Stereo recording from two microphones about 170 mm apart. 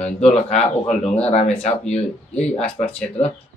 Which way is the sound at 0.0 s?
40° left (ahead or behind).